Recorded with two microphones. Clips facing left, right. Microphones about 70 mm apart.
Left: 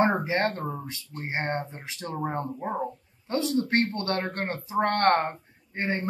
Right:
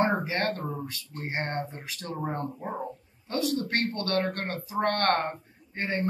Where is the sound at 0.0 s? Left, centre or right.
Left.